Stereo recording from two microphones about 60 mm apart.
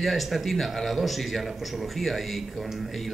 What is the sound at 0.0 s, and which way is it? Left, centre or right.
Speech, centre.